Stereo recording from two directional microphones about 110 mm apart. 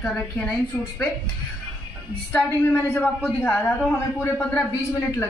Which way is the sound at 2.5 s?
25° left (ahead or behind).